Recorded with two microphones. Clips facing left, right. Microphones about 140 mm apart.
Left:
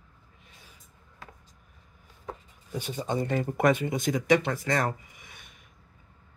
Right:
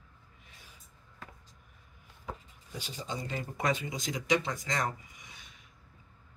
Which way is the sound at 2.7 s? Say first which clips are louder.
Left 9 dB; 55° left (ahead or behind).